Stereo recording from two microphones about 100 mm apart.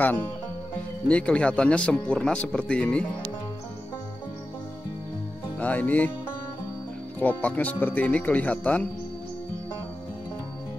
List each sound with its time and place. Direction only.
1.0 s speech: 10° left (ahead or behind)
5.6 s speech: 15° left (ahead or behind)
7.2 s speech: 15° left (ahead or behind)